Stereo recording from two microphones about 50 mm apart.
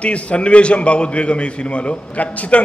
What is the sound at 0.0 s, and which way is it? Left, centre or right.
A man's voice, left.